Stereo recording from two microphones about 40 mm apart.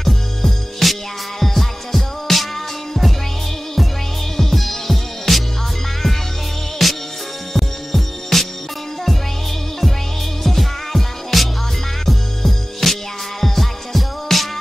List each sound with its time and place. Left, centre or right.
0.0 s music: centre
4.4 s music: centre
6.8 s music: centre
10.4 s music: centre